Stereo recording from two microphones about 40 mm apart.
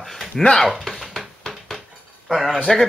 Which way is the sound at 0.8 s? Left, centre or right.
Centre.